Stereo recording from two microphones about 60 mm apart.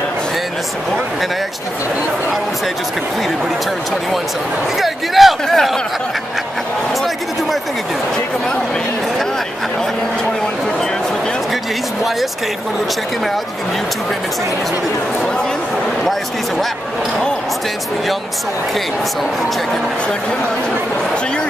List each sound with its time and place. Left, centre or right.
4.7 s speech: centre
16.0 s speech: centre